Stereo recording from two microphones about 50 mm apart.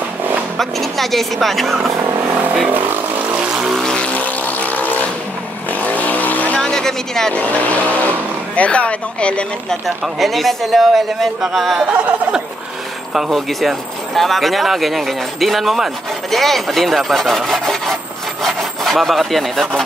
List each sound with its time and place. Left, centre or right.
0.6 s speech: centre
3.8 s vehicle: centre
4.5 s vehicle: left
6.6 s a sound: centre
7.3 s speech: left
10.0 s speech: centre
11.9 s a sound: right
13.1 s speech: centre
13.5 s speech: centre